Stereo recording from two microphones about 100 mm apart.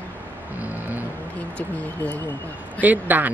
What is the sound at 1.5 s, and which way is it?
Speech, 15° left (ahead or behind).